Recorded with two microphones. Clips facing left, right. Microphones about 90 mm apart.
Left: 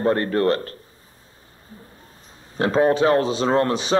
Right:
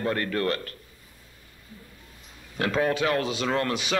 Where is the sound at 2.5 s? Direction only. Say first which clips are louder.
Left 7 dB; 30° left (ahead or behind).